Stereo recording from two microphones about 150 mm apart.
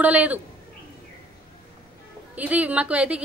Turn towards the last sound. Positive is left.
turn(degrees=-10)  # may be behind; listen again after turning